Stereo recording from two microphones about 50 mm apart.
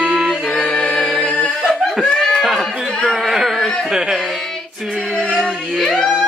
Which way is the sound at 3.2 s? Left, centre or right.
Centre.